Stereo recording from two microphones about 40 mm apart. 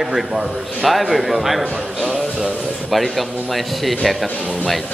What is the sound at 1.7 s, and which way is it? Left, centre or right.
Speech, centre.